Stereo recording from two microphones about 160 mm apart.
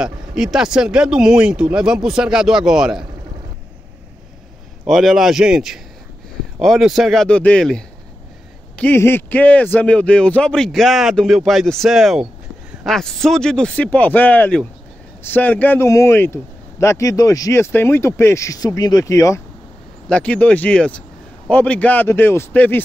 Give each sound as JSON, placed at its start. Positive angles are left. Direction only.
{"t": 0.0, "sound": "a man's voice", "side_deg": -5}
{"t": 4.8, "sound": "a man's voice", "side_deg": 0}
{"t": 20.1, "sound": "a man's voice", "side_deg": 10}